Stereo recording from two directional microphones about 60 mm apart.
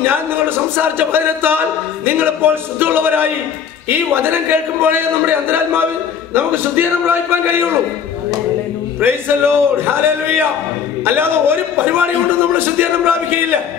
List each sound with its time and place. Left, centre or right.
0.0 s a man's voice: right
9.0 s a man's voice: right